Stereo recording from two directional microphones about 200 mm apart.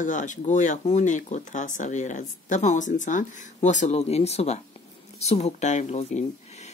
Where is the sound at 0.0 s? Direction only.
40° left (ahead or behind).